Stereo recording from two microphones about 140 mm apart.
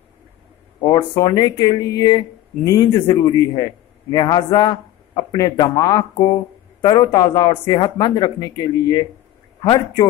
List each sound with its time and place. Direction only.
0.8 s speech: 30° left (ahead or behind)